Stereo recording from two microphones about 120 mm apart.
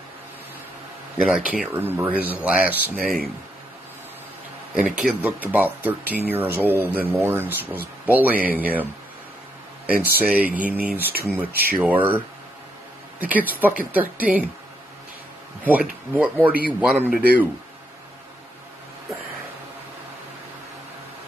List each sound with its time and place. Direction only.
1.1 s speech: 10° right (ahead or behind)
3.0 s speech: centre (ahead or behind)
4.8 s speech: 10° right (ahead or behind)
9.8 s speech: 10° right (ahead or behind)
13.2 s speech: 15° right (ahead or behind)
15.6 s speech: 10° right (ahead or behind)